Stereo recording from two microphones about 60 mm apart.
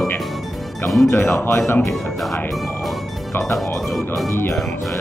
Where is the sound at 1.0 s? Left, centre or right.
Left.